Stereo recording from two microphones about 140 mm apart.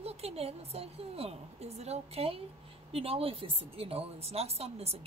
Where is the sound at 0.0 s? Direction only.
45° right (ahead or behind).